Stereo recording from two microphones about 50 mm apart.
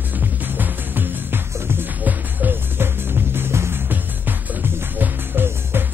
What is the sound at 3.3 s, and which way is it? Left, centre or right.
Music, right.